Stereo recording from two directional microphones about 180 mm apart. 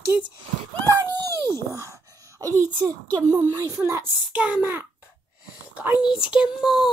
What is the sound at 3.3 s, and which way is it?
A child's voice, 20° right (ahead or behind).